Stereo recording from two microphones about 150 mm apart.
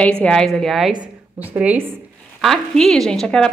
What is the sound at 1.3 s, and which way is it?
Speech, 10° right (ahead or behind).